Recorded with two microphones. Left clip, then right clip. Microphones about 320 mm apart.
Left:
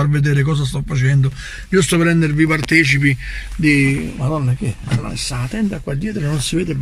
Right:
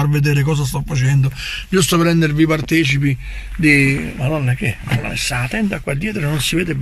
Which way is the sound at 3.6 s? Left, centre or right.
Right.